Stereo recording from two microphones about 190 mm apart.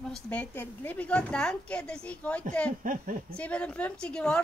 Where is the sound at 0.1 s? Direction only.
10° left (ahead or behind).